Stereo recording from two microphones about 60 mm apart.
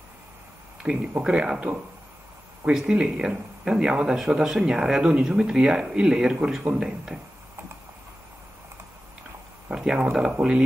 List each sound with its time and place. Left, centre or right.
0.8 s speech: right
1.2 s speech: centre
9.7 s a sound: centre
10.3 s speech: centre